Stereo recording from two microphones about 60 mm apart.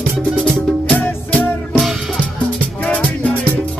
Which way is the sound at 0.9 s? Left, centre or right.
Left.